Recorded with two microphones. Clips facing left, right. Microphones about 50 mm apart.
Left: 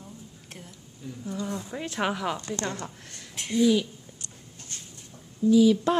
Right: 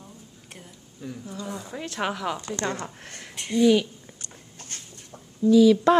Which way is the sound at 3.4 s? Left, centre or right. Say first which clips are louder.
Right 2 dB; centre.